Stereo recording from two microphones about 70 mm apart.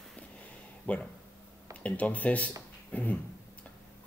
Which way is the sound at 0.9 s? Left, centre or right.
Left.